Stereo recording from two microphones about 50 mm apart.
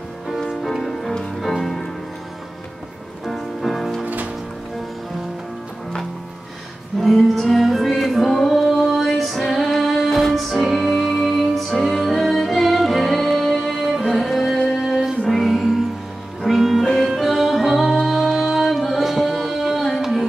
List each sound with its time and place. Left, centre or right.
0.6 s music: centre
3.3 s music: centre
4.0 s music: right
7.0 s music: centre
16.8 s music: centre
17.1 s music: centre